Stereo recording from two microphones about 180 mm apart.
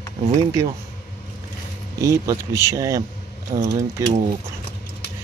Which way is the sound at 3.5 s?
30° right (ahead or behind).